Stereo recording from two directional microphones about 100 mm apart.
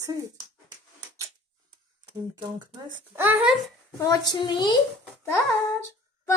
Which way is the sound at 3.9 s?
40° left (ahead or behind).